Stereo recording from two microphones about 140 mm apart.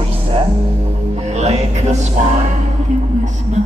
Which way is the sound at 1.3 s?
50° right (ahead or behind).